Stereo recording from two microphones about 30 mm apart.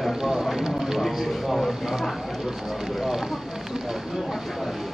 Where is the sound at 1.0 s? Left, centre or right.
Centre.